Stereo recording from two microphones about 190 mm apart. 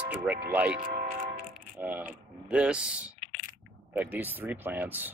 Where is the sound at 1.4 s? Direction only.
5° right (ahead or behind).